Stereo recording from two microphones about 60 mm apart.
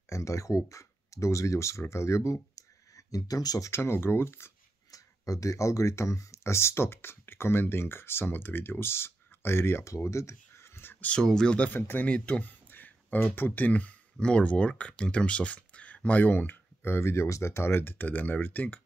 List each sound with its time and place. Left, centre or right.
0.0 s speech: left
3.7 s speech: left
4.9 s speech: left
9.8 s speech: left
11.2 s speech: centre
11.5 s speech: left
12.4 s speech: left